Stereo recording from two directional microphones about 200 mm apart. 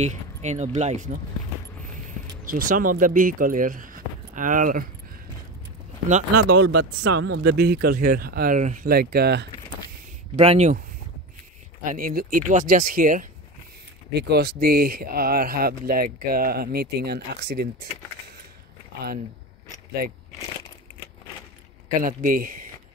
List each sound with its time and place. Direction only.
0.0 s speech: 35° right (ahead or behind)
2.4 s speech: 45° right (ahead or behind)
6.5 s speech: 65° right (ahead or behind)
10.3 s speech: 30° right (ahead or behind)
11.8 s speech: 45° right (ahead or behind)
14.1 s speech: 55° right (ahead or behind)
22.0 s speech: 45° right (ahead or behind)